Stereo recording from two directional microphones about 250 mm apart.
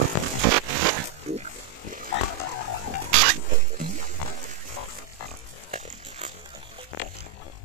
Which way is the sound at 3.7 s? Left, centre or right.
Right.